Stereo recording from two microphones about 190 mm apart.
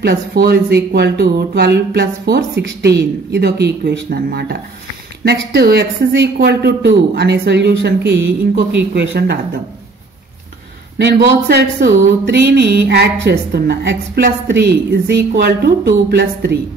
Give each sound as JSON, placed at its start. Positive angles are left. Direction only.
{"t": 0.0, "sound": "speech", "side_deg": -60}
{"t": 11.0, "sound": "speech", "side_deg": -60}